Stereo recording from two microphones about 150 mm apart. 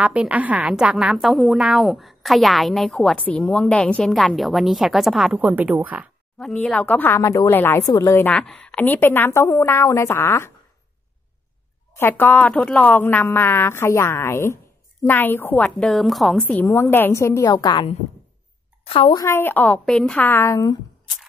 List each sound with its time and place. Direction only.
0.0 s a woman's voice: 10° right (ahead or behind)
6.3 s a woman's voice: 5° left (ahead or behind)
8.3 s a woman's voice: 5° left (ahead or behind)
11.9 s a woman's voice: 15° left (ahead or behind); by 19.1 s 40° left (ahead or behind)
19.1 s a woman's voice: 20° left (ahead or behind)